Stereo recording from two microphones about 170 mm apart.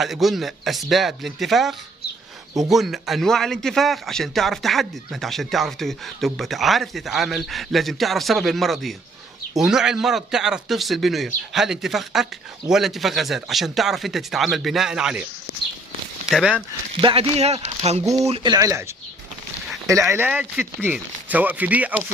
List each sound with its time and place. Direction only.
0.0 s a man's voice: centre (ahead or behind)
16.3 s speech: 5° right (ahead or behind)
16.9 s speech: 35° right (ahead or behind)
18.0 s speech: 20° right (ahead or behind)
20.1 s speech: 10° right (ahead or behind)